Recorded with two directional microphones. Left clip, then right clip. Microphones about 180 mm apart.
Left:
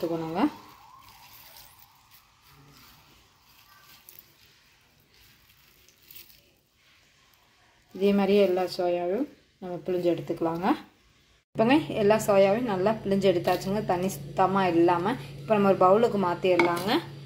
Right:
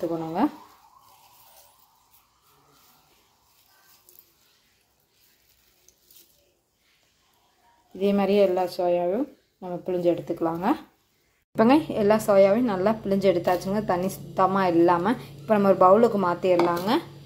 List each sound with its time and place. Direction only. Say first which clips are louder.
0.0 s speech: right 2 dB; centre (ahead or behind)
8.0 s a woman's voice: right 2 dB; centre (ahead or behind)